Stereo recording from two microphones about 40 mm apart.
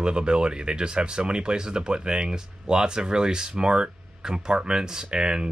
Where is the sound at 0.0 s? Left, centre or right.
Right.